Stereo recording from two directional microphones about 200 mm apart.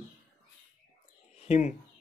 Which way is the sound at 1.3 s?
35° left (ahead or behind).